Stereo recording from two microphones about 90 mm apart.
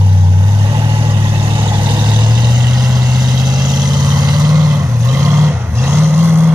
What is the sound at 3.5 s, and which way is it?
Vehicle, 45° right (ahead or behind).